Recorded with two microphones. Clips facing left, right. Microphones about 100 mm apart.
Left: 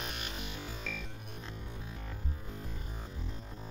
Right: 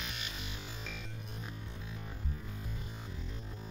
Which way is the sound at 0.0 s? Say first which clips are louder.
Left 3 dB; 45° left (ahead or behind).